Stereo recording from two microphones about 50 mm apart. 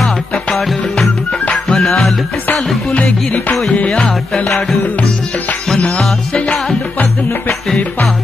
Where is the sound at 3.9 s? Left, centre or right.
Centre.